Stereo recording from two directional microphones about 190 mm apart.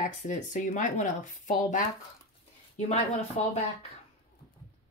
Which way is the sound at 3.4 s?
35° left (ahead or behind).